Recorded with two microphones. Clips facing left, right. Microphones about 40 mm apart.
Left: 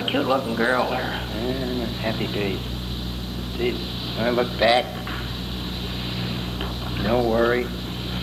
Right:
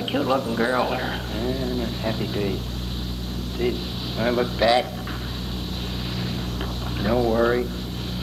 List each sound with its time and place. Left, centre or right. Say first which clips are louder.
0.0 s a sound: left 1 dB; left
0.3 s speech: even; centre
1.1 s a sound: even; centre
2.0 s speech: left 1 dB; left
3.6 s speech: even; centre
4.6 s speech: left 1 dB; left
7.0 s speech: even; centre